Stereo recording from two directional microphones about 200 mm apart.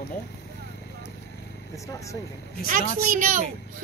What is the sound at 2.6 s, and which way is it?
Speech, 40° right (ahead or behind).